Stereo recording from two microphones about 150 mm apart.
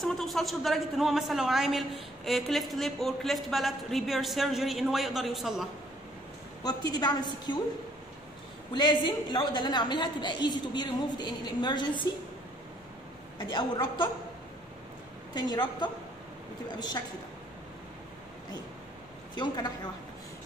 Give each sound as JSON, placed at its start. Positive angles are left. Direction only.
{"t": 0.0, "sound": "a woman's voice", "side_deg": 0}
{"t": 6.6, "sound": "a woman's voice", "side_deg": 25}
{"t": 8.7, "sound": "a woman's voice", "side_deg": 30}
{"t": 13.4, "sound": "a woman's voice", "side_deg": 30}
{"t": 15.3, "sound": "a woman's voice", "side_deg": 25}
{"t": 19.3, "sound": "a woman's voice", "side_deg": 30}